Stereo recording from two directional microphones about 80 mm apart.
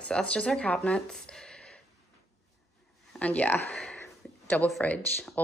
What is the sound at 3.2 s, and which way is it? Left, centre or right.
Speech, centre.